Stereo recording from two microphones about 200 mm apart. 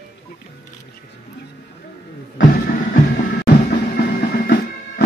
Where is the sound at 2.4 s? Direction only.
40° left (ahead or behind).